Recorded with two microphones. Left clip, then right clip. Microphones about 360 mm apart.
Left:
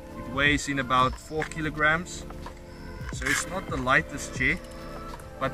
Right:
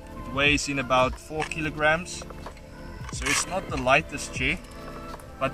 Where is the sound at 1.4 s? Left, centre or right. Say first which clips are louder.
Right 1 dB; centre.